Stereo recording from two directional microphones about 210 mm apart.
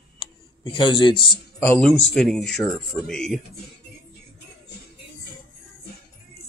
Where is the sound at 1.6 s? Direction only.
10° left (ahead or behind).